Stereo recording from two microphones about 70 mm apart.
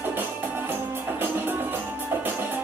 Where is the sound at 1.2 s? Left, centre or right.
Right.